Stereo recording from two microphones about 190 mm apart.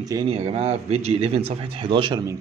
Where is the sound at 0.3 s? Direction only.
35° right (ahead or behind).